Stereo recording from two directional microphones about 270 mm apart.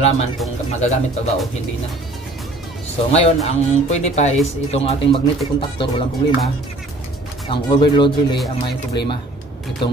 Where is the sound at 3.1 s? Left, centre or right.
Left.